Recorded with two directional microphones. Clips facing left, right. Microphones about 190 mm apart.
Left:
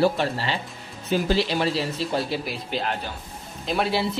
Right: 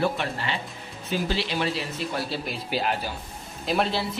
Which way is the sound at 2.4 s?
5° right (ahead or behind).